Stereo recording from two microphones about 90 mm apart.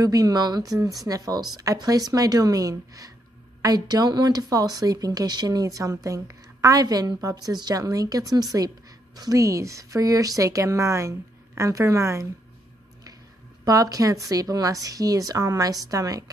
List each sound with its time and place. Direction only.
0.0 s a woman's voice: 45° right (ahead or behind)
13.7 s a woman's voice: 45° right (ahead or behind)